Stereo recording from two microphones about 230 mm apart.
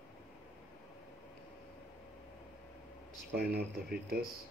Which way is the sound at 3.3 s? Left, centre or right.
Right.